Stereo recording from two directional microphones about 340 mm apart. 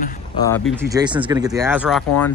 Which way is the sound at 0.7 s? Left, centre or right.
Centre.